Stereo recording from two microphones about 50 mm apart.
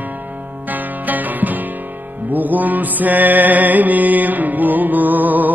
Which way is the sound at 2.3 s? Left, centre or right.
Right.